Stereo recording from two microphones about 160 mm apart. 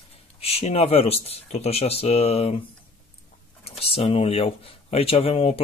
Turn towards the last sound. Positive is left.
turn(degrees=40)  # may be behind; listen again after turning